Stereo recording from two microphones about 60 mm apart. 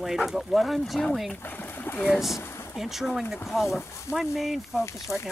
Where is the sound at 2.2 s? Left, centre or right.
Centre.